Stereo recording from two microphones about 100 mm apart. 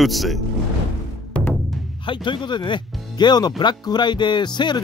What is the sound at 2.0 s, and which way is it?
Speech, 55° left (ahead or behind).